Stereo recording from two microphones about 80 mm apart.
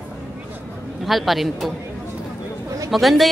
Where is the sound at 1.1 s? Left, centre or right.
Centre.